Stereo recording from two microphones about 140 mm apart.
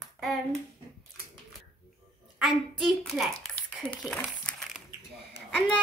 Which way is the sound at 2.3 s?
Centre (ahead or behind).